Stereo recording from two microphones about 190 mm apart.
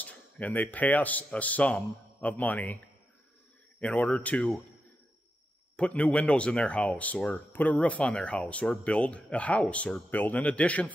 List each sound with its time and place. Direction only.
0.0 s speech: 10° left (ahead or behind)
3.8 s speech: 5° left (ahead or behind)
5.8 s speech: 5° left (ahead or behind)